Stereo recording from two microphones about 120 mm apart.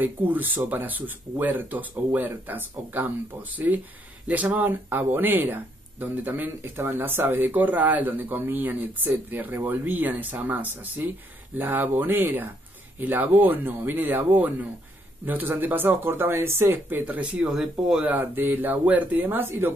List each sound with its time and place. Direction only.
0.0 s speech: 15° right (ahead or behind)